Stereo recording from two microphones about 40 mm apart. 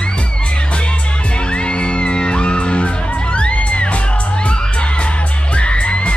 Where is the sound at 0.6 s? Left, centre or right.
Left.